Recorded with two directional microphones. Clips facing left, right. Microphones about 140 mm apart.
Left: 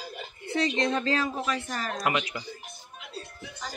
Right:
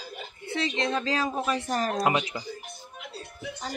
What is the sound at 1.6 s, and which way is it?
Speech, 40° right (ahead or behind).